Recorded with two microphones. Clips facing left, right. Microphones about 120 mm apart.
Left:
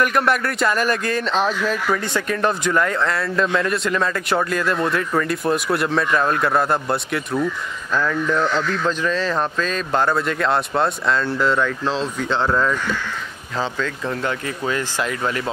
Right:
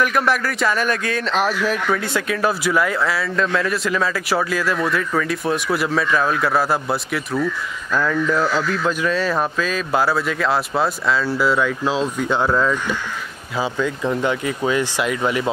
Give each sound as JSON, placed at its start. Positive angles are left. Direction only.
{"t": 0.0, "sound": "speech", "side_deg": 0}
{"t": 13.6, "sound": "speech", "side_deg": -15}